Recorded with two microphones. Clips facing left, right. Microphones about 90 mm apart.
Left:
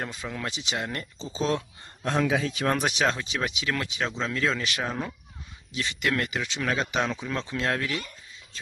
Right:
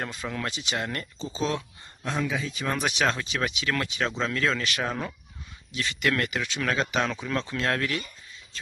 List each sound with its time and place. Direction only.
0.0 s speech: 5° left (ahead or behind)
2.2 s speech: 75° left (ahead or behind)
2.6 s speech: 40° left (ahead or behind)
3.0 s speech: 15° left (ahead or behind)
5.8 s speech: 20° left (ahead or behind)